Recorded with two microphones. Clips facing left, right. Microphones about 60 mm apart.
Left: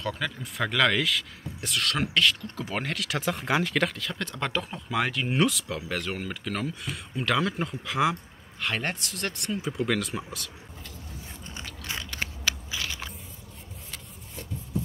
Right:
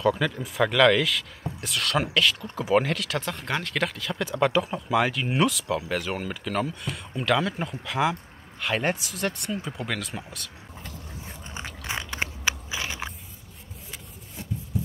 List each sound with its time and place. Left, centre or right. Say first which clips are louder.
0.0 s speech: right 8 dB; centre
11.5 s biting: right 4 dB; right